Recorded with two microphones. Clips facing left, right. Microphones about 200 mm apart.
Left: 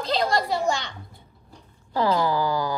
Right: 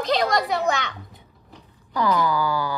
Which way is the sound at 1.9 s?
30° left (ahead or behind).